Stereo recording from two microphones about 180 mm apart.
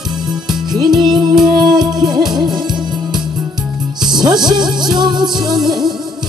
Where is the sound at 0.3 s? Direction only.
Centre (ahead or behind).